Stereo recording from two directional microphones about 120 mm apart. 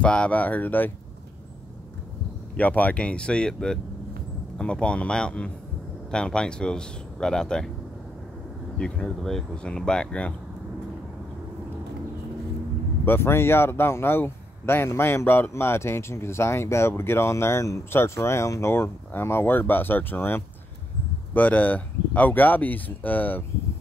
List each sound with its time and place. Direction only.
0.0 s speech: 10° left (ahead or behind)
2.5 s speech: 10° left (ahead or behind)
8.7 s speech: 5° left (ahead or behind)
13.0 s speech: 20° left (ahead or behind)